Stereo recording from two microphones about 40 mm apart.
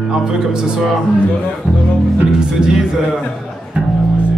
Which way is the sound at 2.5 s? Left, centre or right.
Centre.